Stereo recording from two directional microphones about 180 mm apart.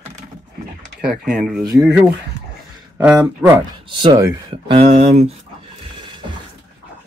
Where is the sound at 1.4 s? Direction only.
Centre (ahead or behind).